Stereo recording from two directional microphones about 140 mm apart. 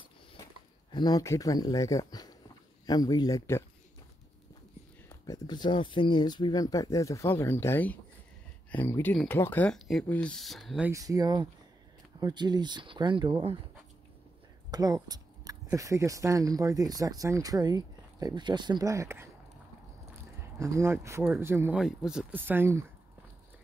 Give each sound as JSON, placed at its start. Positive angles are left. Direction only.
{"t": 0.9, "sound": "speech", "side_deg": 30}
{"t": 5.2, "sound": "speech", "side_deg": 30}
{"t": 10.9, "sound": "speech", "side_deg": -25}
{"t": 14.7, "sound": "speech", "side_deg": -25}
{"t": 20.5, "sound": "speech", "side_deg": -20}
{"t": 21.7, "sound": "speech", "side_deg": -5}
{"t": 22.4, "sound": "speech", "side_deg": -15}